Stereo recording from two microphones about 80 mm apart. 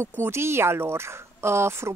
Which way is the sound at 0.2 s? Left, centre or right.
Right.